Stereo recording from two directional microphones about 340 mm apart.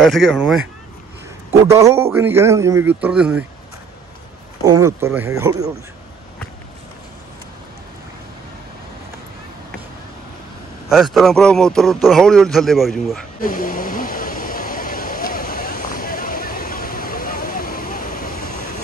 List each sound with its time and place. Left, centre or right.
0.0 s a man's voice: centre
4.6 s a man's voice: centre
10.9 s a man's voice: centre
13.4 s a sound: left